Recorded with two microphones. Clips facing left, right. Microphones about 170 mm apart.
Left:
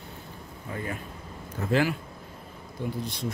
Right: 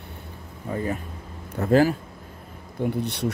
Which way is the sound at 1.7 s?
40° right (ahead or behind).